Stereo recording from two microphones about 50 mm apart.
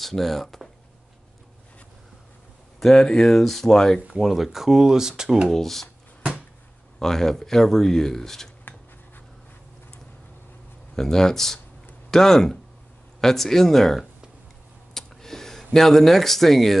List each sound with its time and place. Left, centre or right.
0.0 s speech: centre
2.8 s speech: centre
4.2 s speech: centre
5.5 s speech: centre
7.0 s speech: centre
11.0 s speech: centre
15.0 s a sound: centre